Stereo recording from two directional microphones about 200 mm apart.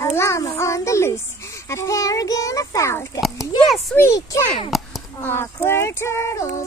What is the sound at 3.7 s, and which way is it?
Child singing, 10° left (ahead or behind).